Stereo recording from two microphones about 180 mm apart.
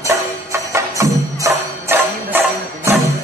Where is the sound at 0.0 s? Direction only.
15° right (ahead or behind).